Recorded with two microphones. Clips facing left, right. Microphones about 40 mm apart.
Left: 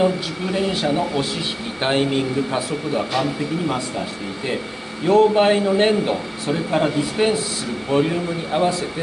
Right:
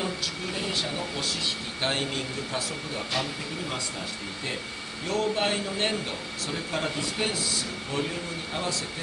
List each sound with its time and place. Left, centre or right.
0.0 s speech: left
5.0 s speech: left